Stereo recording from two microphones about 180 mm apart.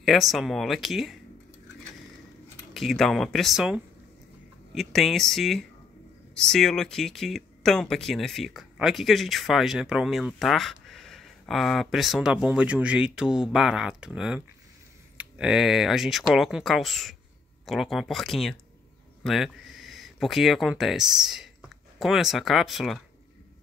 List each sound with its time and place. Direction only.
0.0 s speech: centre (ahead or behind)
2.7 s speech: centre (ahead or behind)